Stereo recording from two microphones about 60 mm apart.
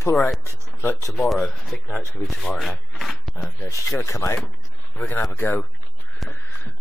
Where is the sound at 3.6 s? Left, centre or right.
Left.